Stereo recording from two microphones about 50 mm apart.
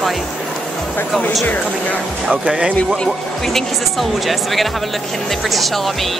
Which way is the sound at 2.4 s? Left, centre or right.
Centre.